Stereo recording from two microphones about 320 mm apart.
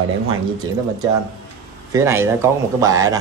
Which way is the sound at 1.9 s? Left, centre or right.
Centre.